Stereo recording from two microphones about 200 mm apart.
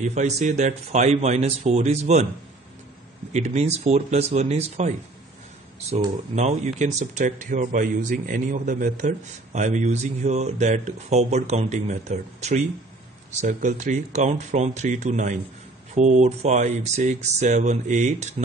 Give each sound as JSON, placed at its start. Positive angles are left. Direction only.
{"t": 0.0, "sound": "speech", "side_deg": -35}
{"t": 3.3, "sound": "speech", "side_deg": -35}